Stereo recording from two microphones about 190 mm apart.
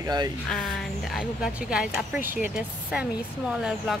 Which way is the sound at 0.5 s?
Centre (ahead or behind).